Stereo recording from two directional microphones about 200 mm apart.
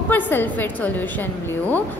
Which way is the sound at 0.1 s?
10° left (ahead or behind).